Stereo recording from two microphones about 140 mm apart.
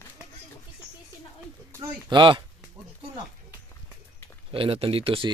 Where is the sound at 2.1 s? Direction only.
35° right (ahead or behind).